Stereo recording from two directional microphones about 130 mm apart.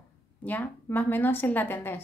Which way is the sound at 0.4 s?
15° left (ahead or behind).